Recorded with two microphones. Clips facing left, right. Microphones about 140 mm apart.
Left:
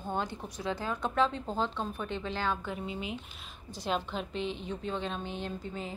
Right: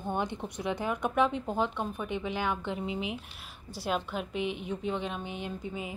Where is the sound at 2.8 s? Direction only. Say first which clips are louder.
Right 4 dB; 80° right.